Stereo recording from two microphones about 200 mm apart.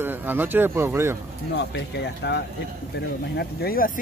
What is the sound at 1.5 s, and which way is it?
Speech, 60° left (ahead or behind).